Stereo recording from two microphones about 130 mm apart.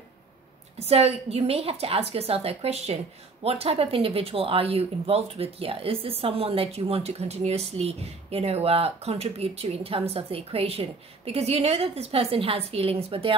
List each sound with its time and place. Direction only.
0.7 s speech: 50° right (ahead or behind)